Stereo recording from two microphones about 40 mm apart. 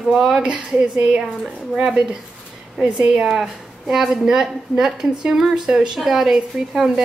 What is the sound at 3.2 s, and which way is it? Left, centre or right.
Speech, centre.